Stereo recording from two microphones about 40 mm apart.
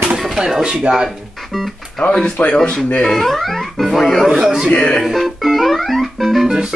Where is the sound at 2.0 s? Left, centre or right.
Centre.